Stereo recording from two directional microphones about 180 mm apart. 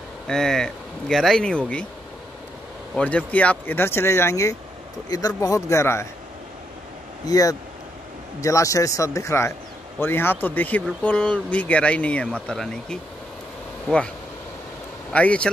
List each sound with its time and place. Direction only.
0.3 s speech: 5° left (ahead or behind)
2.9 s speech: 5° left (ahead or behind)
7.2 s speech: 20° left (ahead or behind)
15.1 s speech: 5° left (ahead or behind)